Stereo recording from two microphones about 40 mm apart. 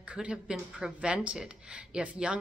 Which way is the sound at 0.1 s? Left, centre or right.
Right.